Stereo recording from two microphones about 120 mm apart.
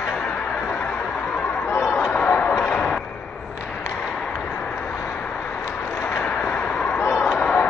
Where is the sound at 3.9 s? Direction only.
5° left (ahead or behind).